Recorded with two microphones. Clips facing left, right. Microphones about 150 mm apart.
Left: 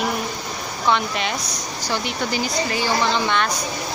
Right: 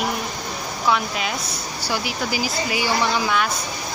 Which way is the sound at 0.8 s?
5° right (ahead or behind).